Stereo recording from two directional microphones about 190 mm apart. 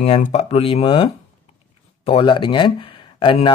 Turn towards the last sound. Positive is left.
turn(degrees=25)  # may be behind; listen again after turning